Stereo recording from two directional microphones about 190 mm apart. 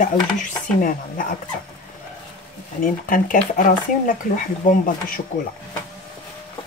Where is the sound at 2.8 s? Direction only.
45° left (ahead or behind).